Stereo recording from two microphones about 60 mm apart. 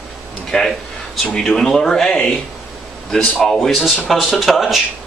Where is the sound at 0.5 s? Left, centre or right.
Centre.